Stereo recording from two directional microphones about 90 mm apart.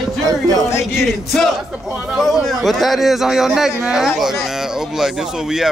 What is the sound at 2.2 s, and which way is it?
Speech, centre (ahead or behind).